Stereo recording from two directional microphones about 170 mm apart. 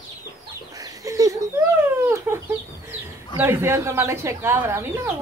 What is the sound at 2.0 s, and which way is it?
Chicken, 15° right (ahead or behind).